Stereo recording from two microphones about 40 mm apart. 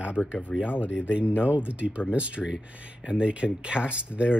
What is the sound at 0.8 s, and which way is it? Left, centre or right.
Speech, right.